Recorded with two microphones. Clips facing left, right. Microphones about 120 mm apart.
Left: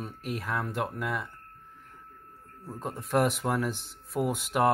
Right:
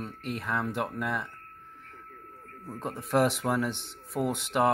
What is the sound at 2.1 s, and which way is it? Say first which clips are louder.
Radio: right 4 dB; 75° right (ahead or behind).